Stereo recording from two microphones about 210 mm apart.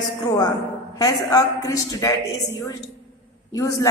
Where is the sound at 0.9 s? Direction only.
15° left (ahead or behind).